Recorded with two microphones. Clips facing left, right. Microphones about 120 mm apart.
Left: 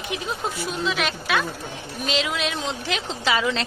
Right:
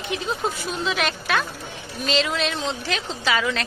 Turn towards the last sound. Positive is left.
turn(degrees=20)  # may be behind; listen again after turning